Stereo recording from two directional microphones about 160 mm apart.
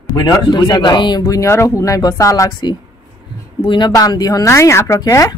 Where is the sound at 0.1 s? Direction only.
25° left (ahead or behind).